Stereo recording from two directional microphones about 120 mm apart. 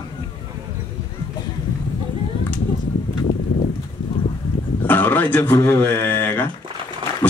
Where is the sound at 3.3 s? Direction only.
30° left (ahead or behind).